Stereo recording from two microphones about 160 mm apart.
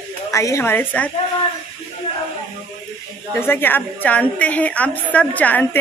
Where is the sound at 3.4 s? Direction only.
15° left (ahead or behind).